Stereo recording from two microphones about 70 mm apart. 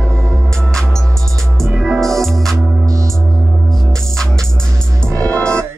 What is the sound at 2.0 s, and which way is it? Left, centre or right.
Music, centre.